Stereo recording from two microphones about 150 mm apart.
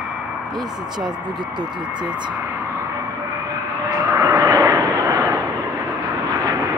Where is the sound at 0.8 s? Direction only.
30° right (ahead or behind).